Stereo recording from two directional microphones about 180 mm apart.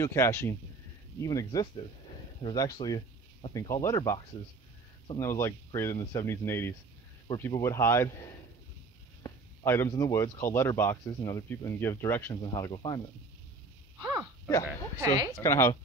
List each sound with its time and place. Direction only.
0.0 s speech: 15° left (ahead or behind)
5.2 s speech: 15° left (ahead or behind)
12.4 s speech: 25° left (ahead or behind)
15.0 s speech: 20° right (ahead or behind)
15.3 s speech: 15° left (ahead or behind)